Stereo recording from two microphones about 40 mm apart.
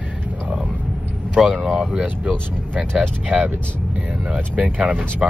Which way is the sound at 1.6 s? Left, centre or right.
Right.